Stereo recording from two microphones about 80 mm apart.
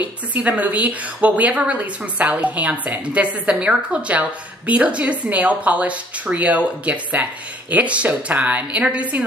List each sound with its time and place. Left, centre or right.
0.3 s a woman's voice: centre